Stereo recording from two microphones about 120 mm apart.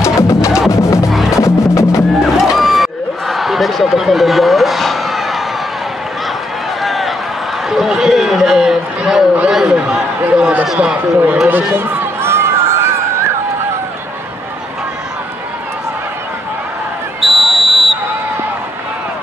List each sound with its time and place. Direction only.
0.0 s music: 25° left (ahead or behind)
1.1 s music: centre (ahead or behind)
1.4 s music: 25° left (ahead or behind)
2.3 s a sound: centre (ahead or behind)
6.8 s run: centre (ahead or behind)
7.7 s a sound: centre (ahead or behind); by 12.9 s 20° right (ahead or behind)
17.2 s basketball bounce: centre (ahead or behind)